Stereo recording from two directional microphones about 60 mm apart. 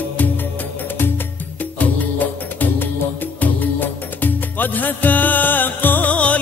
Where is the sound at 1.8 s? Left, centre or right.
Left.